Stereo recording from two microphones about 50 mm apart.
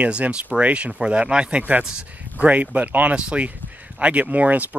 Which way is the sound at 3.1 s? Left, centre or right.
Right.